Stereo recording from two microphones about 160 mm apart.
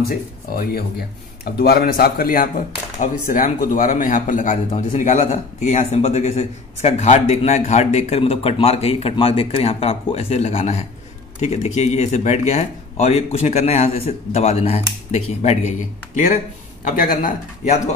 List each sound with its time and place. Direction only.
0.1 s speech: 65° left (ahead or behind); by 17.9 s 50° left (ahead or behind)